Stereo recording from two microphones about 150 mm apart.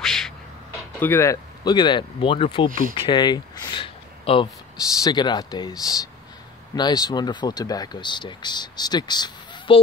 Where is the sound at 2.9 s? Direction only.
30° left (ahead or behind).